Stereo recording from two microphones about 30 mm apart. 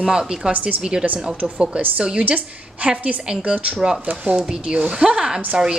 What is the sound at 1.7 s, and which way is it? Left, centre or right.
Speech, right.